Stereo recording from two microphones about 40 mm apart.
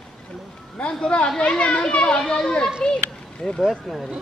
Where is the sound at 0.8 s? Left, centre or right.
Left.